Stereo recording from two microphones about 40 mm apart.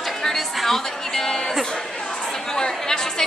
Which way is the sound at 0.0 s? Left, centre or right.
Centre.